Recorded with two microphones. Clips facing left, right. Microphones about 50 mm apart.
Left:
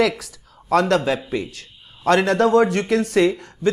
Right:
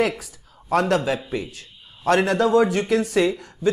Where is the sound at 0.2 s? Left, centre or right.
Left.